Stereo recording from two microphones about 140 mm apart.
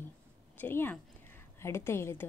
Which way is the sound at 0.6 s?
15° left (ahead or behind).